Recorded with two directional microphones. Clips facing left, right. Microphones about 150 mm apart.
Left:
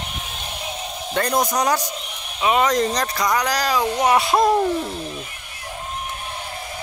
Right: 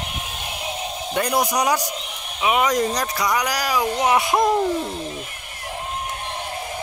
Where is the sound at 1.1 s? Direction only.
10° right (ahead or behind).